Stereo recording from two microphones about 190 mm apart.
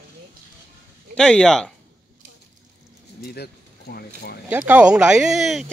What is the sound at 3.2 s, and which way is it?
Speech, 55° left (ahead or behind).